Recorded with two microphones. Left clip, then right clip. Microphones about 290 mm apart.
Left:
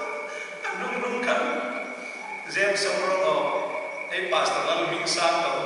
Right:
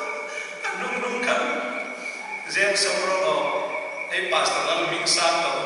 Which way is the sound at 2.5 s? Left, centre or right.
Centre.